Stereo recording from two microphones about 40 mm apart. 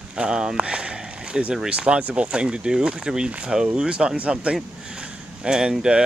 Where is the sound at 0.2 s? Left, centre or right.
Centre.